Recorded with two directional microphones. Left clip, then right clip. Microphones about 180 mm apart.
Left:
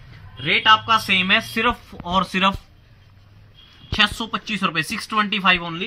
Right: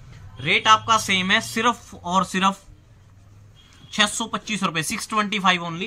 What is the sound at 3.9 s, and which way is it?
Speech, 20° right (ahead or behind).